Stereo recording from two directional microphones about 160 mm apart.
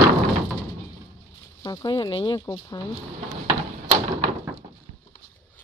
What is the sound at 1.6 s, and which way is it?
Speech, 25° left (ahead or behind).